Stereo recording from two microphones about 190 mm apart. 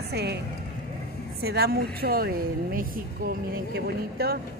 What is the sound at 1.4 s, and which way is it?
A woman's voice, 55° right (ahead or behind).